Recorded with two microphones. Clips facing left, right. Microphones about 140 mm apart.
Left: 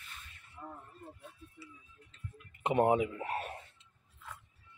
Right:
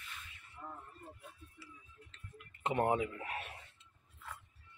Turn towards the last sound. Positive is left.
turn(degrees=40)  # may be behind; listen again after turning